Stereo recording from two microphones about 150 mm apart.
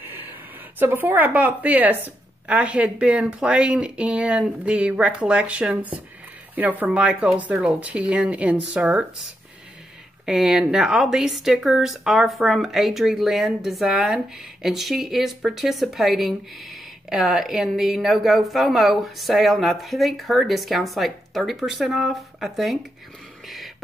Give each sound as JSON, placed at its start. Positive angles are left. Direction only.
{"t": 0.0, "sound": "speech", "side_deg": -15}
{"t": 10.2, "sound": "speech", "side_deg": -5}